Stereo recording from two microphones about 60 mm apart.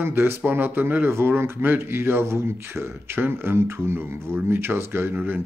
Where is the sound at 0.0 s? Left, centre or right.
Right.